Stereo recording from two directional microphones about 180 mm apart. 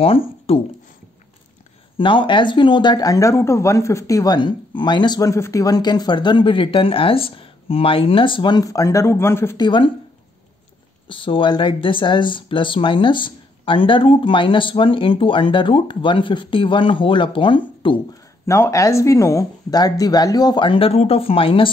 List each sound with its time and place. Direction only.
0.0 s speech: 30° left (ahead or behind)
2.0 s speech: 25° left (ahead or behind)
9.7 s speech: 25° left (ahead or behind)
11.1 s speech: 30° left (ahead or behind)
18.4 s speech: 15° left (ahead or behind); by 21.6 s 30° left (ahead or behind)